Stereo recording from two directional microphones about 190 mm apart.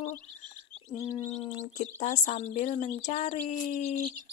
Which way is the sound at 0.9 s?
20° left (ahead or behind).